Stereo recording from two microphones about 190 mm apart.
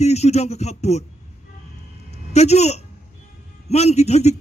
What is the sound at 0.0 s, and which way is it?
A man's voice, 35° left (ahead or behind).